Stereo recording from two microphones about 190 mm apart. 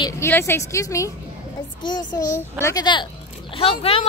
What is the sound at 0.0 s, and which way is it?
Speech, 15° left (ahead or behind).